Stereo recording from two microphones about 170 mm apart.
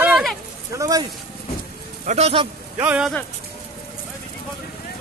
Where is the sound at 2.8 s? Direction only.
5° right (ahead or behind).